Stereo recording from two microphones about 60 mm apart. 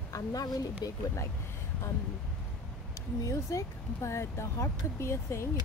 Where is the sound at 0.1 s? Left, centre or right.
Left.